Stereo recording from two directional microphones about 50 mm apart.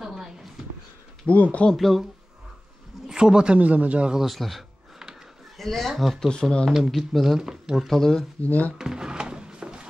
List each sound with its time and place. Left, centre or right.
0.0 s a sound: centre
1.2 s speech: left
1.8 s speech: centre
3.1 s speech: centre
3.5 s speech: right
4.1 s speech: centre
7.0 s speech: centre
7.7 s speech: centre
8.4 s speech: left
8.7 s drawer open or close: centre